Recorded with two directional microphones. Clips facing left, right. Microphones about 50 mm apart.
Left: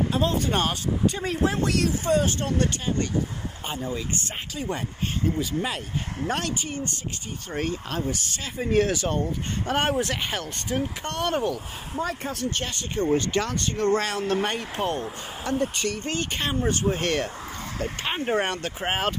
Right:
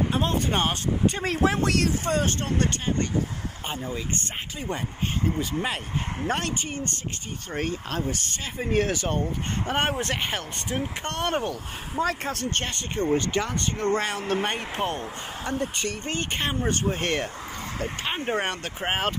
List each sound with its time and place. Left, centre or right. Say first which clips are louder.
0.1 s speech: left 1 dB; right
1.2 s speech: right 1 dB; right
5.6 s speech: even; right
8.5 s speech: left 2 dB; right
9.9 s speech: left 1 dB; right
12.0 s speech: right 2 dB; right
12.6 s speech: left 1 dB; right
13.1 s speech: left 1 dB; right
18.3 s speech: left 4 dB; centre